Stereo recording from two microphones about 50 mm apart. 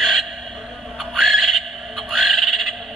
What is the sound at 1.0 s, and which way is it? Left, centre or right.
Frog, centre.